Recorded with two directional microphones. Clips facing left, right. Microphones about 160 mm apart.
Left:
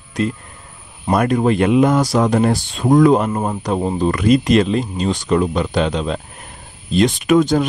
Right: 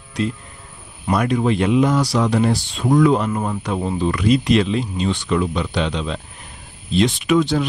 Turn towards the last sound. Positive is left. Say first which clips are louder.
# left 3 dB
turn(degrees=45)  # may be behind; listen again after turning